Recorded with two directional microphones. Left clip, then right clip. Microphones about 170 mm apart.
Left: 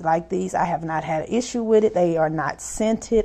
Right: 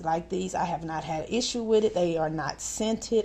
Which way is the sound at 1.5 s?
30° left (ahead or behind).